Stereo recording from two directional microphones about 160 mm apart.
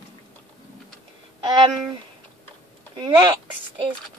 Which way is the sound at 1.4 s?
25° right (ahead or behind).